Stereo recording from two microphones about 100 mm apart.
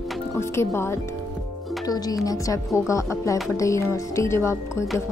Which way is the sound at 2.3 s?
30° left (ahead or behind).